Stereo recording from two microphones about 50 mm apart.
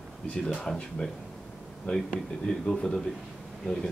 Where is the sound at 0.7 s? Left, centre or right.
Centre.